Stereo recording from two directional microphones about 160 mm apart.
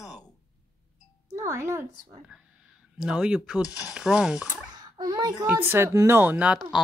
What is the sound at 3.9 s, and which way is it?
Speech, 5° right (ahead or behind).